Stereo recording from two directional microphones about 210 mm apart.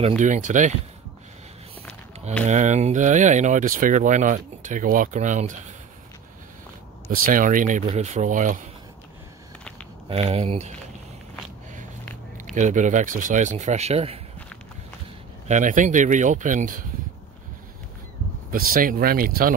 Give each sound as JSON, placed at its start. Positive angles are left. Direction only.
{"t": 0.2, "sound": "speech", "side_deg": -35}
{"t": 2.4, "sound": "speech", "side_deg": -35}
{"t": 7.2, "sound": "speech", "side_deg": -40}
{"t": 10.0, "sound": "speech", "side_deg": -30}
{"t": 12.0, "sound": "a sound", "side_deg": 10}
{"t": 12.5, "sound": "speech", "side_deg": -35}
{"t": 15.4, "sound": "speech", "side_deg": -35}
{"t": 18.5, "sound": "speech", "side_deg": -40}